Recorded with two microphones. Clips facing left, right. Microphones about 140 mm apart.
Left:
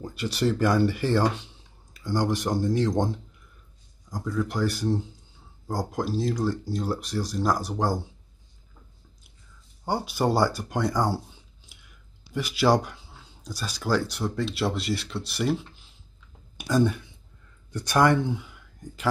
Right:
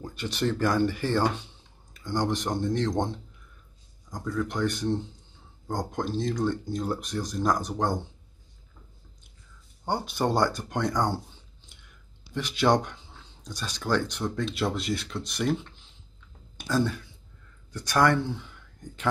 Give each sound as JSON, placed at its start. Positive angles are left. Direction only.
{"t": 0.0, "sound": "speech", "side_deg": 5}
{"t": 9.8, "sound": "speech", "side_deg": 10}
{"t": 11.7, "sound": "chewing", "side_deg": 10}
{"t": 12.4, "sound": "speech", "side_deg": 5}